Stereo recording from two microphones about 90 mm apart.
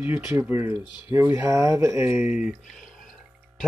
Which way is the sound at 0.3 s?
20° right (ahead or behind).